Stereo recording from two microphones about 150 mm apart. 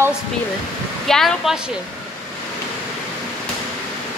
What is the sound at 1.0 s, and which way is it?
Speech, centre (ahead or behind).